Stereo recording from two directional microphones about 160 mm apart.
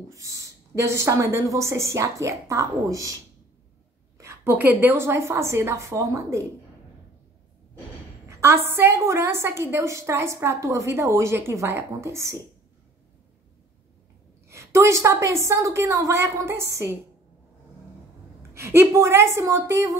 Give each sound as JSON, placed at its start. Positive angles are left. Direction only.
{"t": 0.1, "sound": "speech", "side_deg": -20}
{"t": 4.2, "sound": "a woman's voice", "side_deg": -15}
{"t": 8.3, "sound": "a sound", "side_deg": -15}
{"t": 8.6, "sound": "a woman's voice", "side_deg": -15}
{"t": 14.5, "sound": "a woman's voice", "side_deg": -20}
{"t": 18.5, "sound": "a woman's voice", "side_deg": -15}